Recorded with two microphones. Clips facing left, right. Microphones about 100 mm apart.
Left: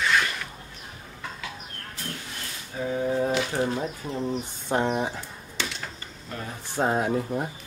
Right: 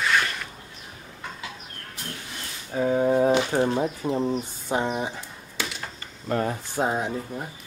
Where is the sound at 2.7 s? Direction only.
40° right (ahead or behind).